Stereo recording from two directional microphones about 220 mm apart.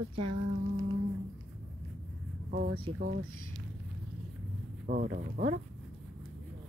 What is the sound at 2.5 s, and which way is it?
Speech, 40° right (ahead or behind).